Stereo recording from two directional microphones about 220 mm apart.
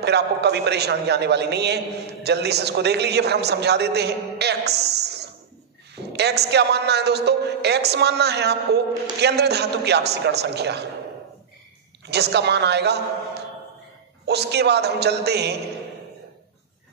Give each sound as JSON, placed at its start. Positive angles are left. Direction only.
{"t": 0.0, "sound": "a man's voice", "side_deg": -50}
{"t": 12.1, "sound": "a man's voice", "side_deg": -50}